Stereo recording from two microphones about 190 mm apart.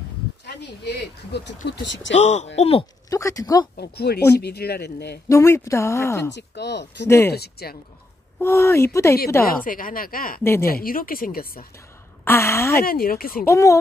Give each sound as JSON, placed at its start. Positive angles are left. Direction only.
{"t": 0.6, "sound": "speech", "side_deg": 65}
{"t": 2.1, "sound": "speech", "side_deg": 35}
{"t": 3.1, "sound": "speech", "side_deg": 15}
{"t": 3.7, "sound": "speech", "side_deg": 55}
{"t": 5.3, "sound": "speech", "side_deg": 15}
{"t": 6.3, "sound": "speech", "side_deg": 65}
{"t": 7.1, "sound": "speech", "side_deg": 15}
{"t": 7.3, "sound": "speech", "side_deg": 55}
{"t": 8.4, "sound": "speech", "side_deg": 15}
{"t": 9.5, "sound": "speech", "side_deg": 45}
{"t": 12.3, "sound": "speech", "side_deg": 15}
{"t": 12.8, "sound": "speech", "side_deg": 50}
{"t": 13.5, "sound": "speech", "side_deg": 15}